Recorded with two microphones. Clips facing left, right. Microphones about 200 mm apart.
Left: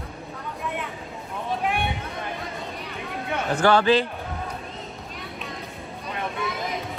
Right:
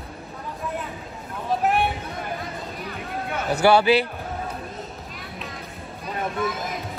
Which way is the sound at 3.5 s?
10° right (ahead or behind).